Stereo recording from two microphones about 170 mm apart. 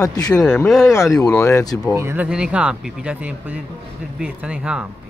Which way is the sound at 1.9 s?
10° right (ahead or behind).